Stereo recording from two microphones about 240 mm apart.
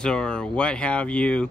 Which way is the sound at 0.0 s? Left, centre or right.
Centre.